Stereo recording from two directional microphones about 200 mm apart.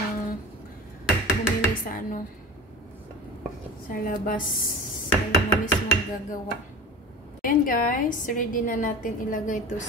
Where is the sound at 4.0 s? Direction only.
45° left (ahead or behind).